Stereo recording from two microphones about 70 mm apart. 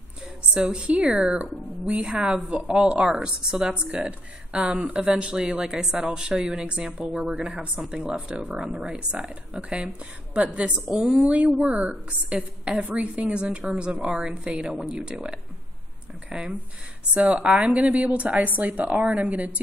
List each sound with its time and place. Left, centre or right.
0.6 s a woman's voice: centre